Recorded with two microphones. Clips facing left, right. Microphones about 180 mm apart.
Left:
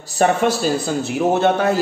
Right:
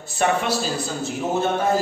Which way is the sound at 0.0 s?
40° left (ahead or behind).